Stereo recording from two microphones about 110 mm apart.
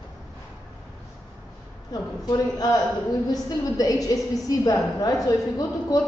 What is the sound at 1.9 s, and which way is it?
A woman's voice, 35° left (ahead or behind).